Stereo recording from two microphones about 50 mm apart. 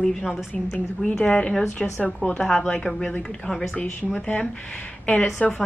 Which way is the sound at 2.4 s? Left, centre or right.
Centre.